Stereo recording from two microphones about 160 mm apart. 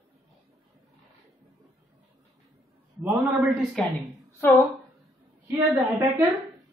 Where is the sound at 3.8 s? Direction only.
5° left (ahead or behind).